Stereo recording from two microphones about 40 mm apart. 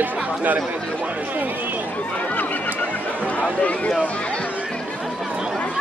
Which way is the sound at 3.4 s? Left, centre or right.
Left.